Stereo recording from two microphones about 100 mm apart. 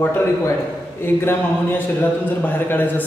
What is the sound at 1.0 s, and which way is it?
A man's voice, 20° left (ahead or behind).